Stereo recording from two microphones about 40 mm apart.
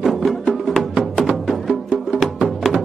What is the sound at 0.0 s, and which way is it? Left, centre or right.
Music, centre.